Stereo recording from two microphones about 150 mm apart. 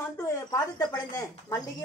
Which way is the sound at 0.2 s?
25° left (ahead or behind).